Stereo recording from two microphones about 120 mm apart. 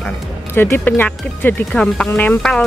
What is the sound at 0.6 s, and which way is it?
Speech, 15° left (ahead or behind).